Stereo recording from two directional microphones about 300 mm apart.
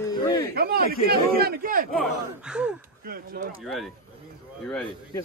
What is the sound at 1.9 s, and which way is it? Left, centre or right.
Speech, centre.